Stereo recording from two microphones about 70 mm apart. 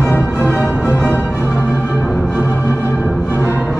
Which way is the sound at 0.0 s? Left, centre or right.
Left.